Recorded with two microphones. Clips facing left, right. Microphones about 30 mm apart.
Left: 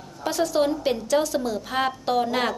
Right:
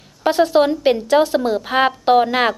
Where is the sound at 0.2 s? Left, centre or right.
Right.